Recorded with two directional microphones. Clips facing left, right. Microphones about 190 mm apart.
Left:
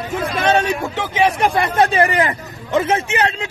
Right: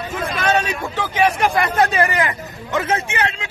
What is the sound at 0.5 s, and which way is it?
Speech, 20° left (ahead or behind).